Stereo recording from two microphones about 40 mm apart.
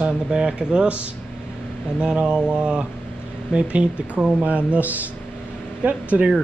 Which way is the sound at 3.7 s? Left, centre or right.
Right.